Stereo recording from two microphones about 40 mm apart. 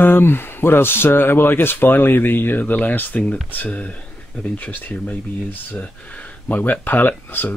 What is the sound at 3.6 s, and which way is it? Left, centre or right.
Speech, left.